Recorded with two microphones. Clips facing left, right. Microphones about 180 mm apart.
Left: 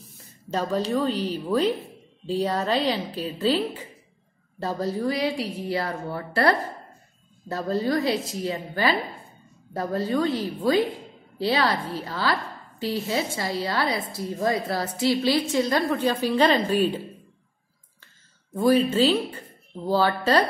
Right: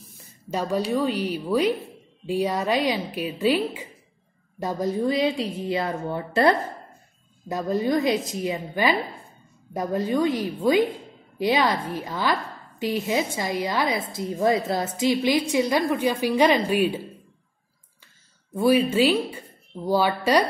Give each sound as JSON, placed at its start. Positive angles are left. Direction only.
{"t": 0.5, "sound": "a woman's voice", "side_deg": -10}
{"t": 18.6, "sound": "a woman's voice", "side_deg": -10}